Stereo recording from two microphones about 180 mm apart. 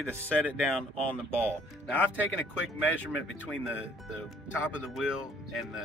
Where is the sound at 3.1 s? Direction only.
90° left.